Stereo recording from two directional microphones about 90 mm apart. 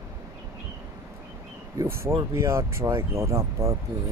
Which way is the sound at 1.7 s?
30° right (ahead or behind).